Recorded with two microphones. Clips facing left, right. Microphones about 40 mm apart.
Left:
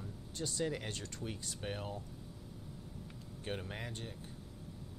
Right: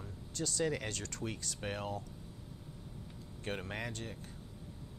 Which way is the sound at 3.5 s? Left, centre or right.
Right.